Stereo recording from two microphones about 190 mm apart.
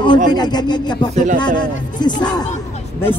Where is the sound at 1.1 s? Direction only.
40° right (ahead or behind).